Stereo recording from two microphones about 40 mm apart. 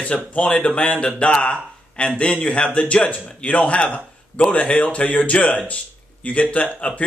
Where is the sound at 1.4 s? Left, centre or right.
Left.